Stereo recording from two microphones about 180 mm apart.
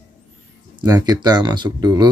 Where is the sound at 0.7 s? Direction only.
20° right (ahead or behind).